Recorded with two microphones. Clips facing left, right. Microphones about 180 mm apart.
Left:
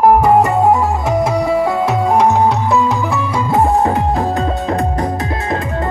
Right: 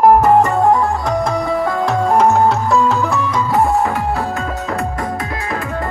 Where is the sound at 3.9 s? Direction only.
20° left (ahead or behind).